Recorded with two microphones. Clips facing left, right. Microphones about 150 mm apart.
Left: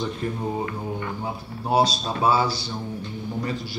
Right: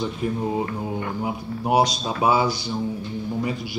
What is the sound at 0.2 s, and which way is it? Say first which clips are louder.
Speech: right 5 dB; 10° right (ahead or behind).